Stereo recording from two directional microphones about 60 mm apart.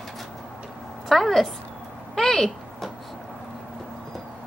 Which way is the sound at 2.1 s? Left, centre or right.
Centre.